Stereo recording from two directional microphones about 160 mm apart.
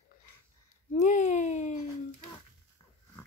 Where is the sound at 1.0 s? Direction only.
45° left (ahead or behind).